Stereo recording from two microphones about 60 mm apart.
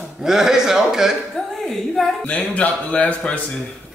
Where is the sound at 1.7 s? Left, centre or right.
Centre.